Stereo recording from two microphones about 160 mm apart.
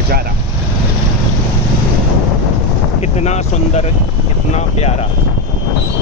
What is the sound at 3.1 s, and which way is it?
Speech, 45° left (ahead or behind).